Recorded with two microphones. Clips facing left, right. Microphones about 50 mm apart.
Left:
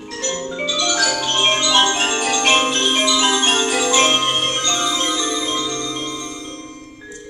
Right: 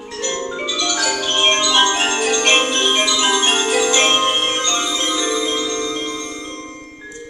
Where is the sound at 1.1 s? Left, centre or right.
Centre.